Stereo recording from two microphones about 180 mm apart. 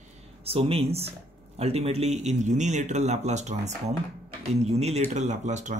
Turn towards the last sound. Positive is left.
turn(degrees=-40)  # may be behind; listen again after turning